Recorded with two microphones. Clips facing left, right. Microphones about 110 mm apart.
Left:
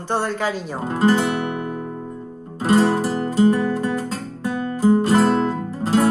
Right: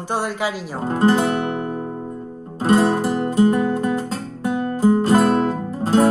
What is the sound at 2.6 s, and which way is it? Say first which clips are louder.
Music: right 1 dB; 20° right (ahead or behind).